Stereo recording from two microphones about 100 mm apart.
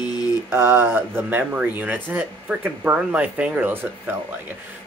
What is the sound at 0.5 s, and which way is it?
Speech, 20° right (ahead or behind).